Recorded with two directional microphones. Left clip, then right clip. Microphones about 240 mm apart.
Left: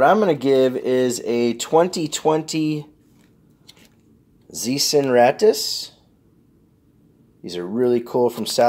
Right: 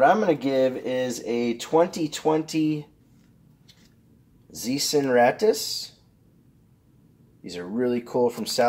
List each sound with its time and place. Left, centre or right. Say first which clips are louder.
0.0 s speech: left 4 dB; left
4.5 s speech: left 5 dB; left
7.4 s speech: left 6 dB; left